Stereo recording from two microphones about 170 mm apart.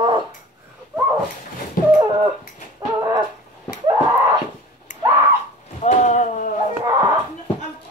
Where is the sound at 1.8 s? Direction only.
55° left (ahead or behind).